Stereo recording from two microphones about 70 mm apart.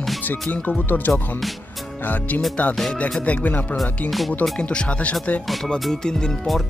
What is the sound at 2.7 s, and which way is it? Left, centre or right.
Speech, centre.